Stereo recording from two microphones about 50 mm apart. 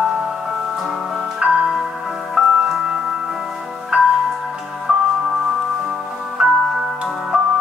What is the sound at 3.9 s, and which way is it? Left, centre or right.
Music, centre.